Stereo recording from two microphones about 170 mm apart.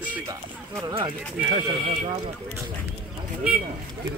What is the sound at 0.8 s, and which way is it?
Speech, 25° right (ahead or behind).